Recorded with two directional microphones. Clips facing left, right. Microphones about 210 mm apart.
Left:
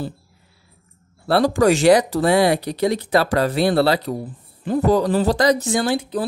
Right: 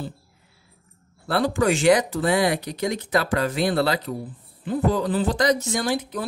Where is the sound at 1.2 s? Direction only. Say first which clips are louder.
Left 5 dB; 35° left (ahead or behind).